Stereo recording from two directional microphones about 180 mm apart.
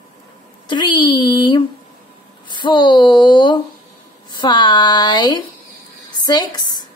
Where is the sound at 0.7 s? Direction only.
25° left (ahead or behind).